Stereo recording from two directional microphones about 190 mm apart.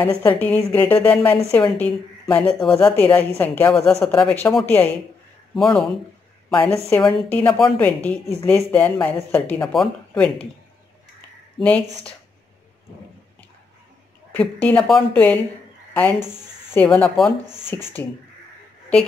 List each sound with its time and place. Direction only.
0.0 s a woman's voice: 10° left (ahead or behind)
6.7 s a woman's voice: 20° left (ahead or behind)
7.2 s a woman's voice: 10° left (ahead or behind)
11.1 s a sound: 5° left (ahead or behind)
14.3 s a woman's voice: 10° left (ahead or behind)